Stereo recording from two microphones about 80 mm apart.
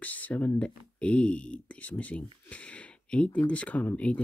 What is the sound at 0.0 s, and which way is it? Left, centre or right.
Speech, left.